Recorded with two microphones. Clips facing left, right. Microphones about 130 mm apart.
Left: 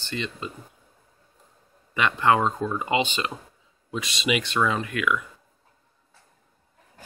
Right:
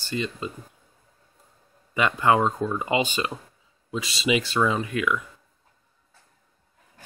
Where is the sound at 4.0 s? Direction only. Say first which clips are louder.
Right 2 dB; 30° right (ahead or behind).